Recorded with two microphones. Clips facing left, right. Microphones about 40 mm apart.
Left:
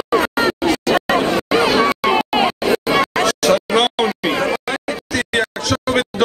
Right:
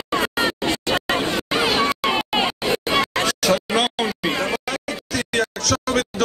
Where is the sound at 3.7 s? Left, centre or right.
Left.